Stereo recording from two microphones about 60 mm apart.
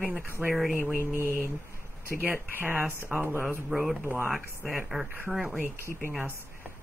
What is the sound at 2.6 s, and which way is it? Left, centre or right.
Speech, right.